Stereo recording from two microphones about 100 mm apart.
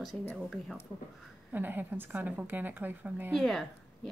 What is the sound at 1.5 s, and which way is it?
A woman's voice, 20° right (ahead or behind).